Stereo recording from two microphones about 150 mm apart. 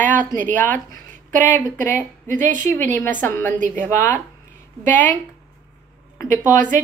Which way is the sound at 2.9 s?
10° left (ahead or behind).